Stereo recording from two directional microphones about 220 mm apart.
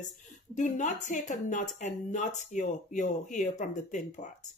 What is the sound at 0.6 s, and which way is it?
Speech, 35° left (ahead or behind).